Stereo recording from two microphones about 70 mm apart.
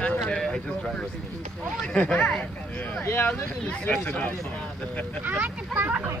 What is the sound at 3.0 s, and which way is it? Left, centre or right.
Speech, left.